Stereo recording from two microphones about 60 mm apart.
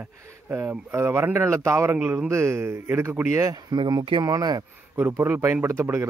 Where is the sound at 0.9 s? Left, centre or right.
Right.